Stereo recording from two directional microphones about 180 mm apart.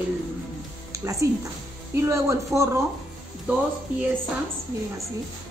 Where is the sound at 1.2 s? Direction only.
15° right (ahead or behind).